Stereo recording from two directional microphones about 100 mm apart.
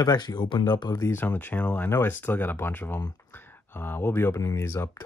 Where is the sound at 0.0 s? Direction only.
40° left (ahead or behind).